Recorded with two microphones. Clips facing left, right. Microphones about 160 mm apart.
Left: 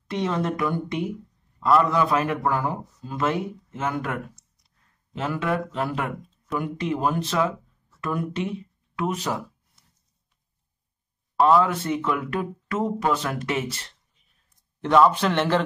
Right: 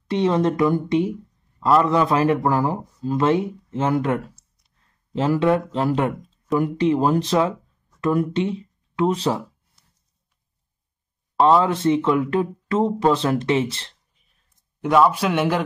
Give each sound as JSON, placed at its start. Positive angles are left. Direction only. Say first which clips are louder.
{"t": 0.1, "sound": "a man's voice", "louder": "right 6 dB", "side_deg": -30}
{"t": 11.3, "sound": "a man's voice", "louder": "right 2 dB", "side_deg": -30}
{"t": 14.8, "sound": "a man's voice", "louder": "right 1 dB", "side_deg": -10}